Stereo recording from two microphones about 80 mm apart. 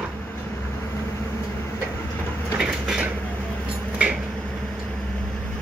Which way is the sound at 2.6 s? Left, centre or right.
Centre.